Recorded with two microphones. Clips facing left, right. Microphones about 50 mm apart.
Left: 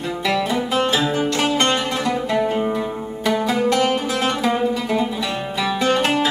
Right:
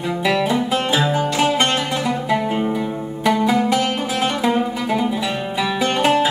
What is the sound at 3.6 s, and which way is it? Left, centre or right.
Music, centre.